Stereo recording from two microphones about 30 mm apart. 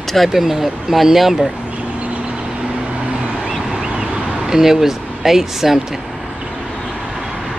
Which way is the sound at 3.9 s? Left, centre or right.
Centre.